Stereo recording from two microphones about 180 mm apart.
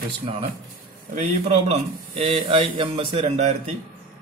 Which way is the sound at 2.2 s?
30° right (ahead or behind).